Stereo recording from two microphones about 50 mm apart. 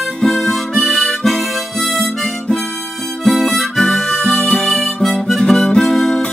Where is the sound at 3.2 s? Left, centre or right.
Centre.